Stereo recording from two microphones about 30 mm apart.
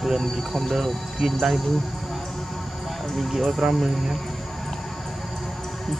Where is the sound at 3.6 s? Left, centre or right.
Centre.